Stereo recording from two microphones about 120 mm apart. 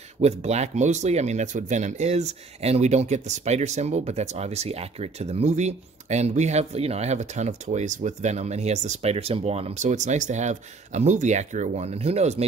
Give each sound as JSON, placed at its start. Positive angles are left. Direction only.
{"t": 0.2, "sound": "speech", "side_deg": -65}